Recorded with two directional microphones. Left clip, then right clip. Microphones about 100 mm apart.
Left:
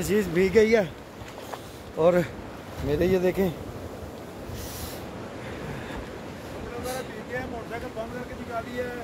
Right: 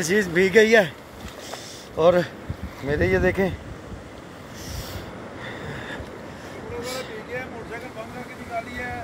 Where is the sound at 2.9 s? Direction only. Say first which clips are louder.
Right 2 dB; 20° left (ahead or behind).